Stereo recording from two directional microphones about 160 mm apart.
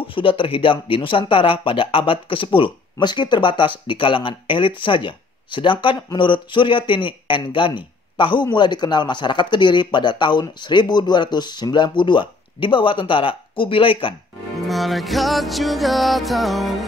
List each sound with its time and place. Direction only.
0.0 s speech: 35° left (ahead or behind)
14.7 s music: centre (ahead or behind)